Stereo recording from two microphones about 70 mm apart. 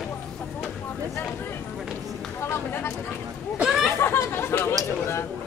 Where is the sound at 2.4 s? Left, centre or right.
Left.